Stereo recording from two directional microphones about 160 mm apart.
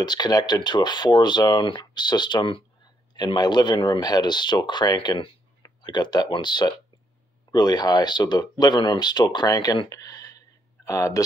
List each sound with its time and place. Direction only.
0.0 s speech: 25° left (ahead or behind)